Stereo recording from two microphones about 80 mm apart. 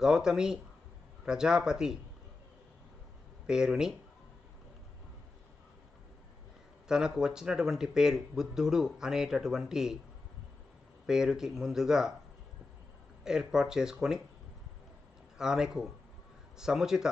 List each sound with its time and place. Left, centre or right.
0.0 s speech: centre
3.4 s speech: centre
6.9 s speech: centre
11.1 s speech: centre
13.2 s speech: centre
15.3 s speech: centre